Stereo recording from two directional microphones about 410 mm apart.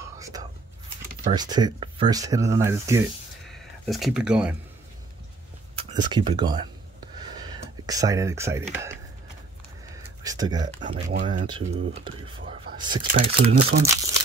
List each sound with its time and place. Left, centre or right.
1.3 s speech: centre
5.8 s speech: centre
10.2 s speech: centre